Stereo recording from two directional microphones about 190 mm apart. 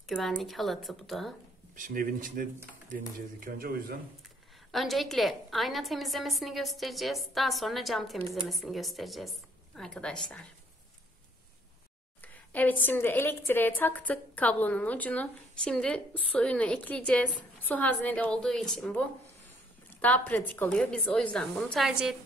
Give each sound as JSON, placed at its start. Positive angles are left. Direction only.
{"t": 0.0, "sound": "a woman's voice", "side_deg": 0}
{"t": 1.8, "sound": "speech", "side_deg": -45}
{"t": 4.6, "sound": "a woman's voice", "side_deg": 0}
{"t": 12.2, "sound": "a woman's voice", "side_deg": 10}